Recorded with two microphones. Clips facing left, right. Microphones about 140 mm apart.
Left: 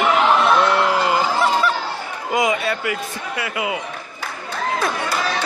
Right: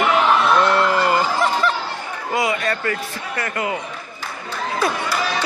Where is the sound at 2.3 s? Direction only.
20° left (ahead or behind).